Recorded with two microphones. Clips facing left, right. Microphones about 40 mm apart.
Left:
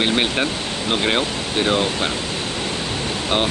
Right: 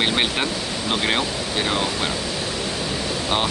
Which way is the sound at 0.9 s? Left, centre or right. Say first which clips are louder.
Left 2 dB; centre.